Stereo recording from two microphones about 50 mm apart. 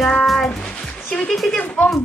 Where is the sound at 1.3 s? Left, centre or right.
Centre.